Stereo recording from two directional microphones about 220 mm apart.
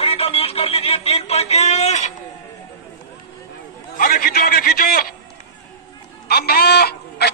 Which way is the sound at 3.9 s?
40° left (ahead or behind).